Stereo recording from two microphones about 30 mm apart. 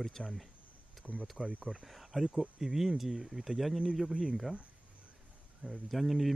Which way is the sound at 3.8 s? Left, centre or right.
Centre.